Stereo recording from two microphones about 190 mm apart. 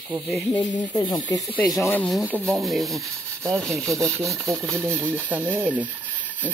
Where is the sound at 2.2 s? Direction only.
10° right (ahead or behind).